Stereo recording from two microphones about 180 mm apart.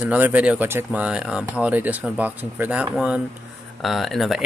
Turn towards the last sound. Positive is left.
turn(degrees=0)  # may be behind; listen again after turning